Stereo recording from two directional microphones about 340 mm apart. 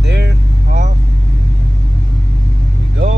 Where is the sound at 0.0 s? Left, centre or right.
Right.